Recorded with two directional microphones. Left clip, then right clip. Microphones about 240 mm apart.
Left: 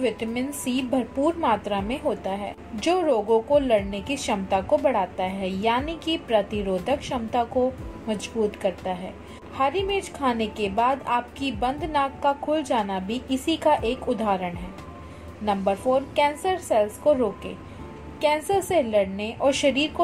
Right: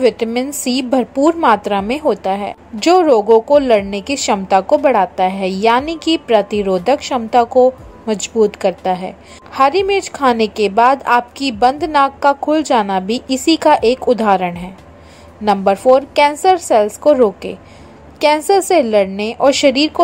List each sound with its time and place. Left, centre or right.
0.0 s a woman's voice: right